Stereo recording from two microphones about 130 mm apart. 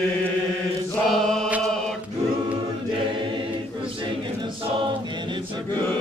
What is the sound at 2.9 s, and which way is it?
Choir, 40° right (ahead or behind).